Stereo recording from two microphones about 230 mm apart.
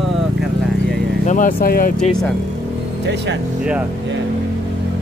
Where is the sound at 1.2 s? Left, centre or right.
Left.